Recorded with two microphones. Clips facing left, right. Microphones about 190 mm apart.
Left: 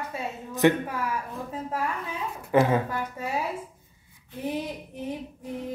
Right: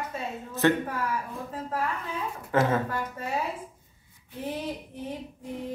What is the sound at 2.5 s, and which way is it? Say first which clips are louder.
Speech: left 3 dB; 15° left (ahead or behind).